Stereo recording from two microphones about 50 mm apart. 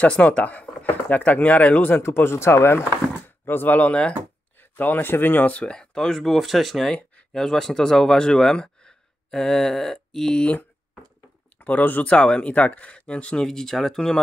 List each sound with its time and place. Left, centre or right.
0.0 s speech: left
2.0 s speech: left
3.4 s speech: left
3.8 s speech: left
4.6 s speech: left
5.7 s speech: centre
11.5 s speech: left
12.2 s speech: left
13.5 s speech: centre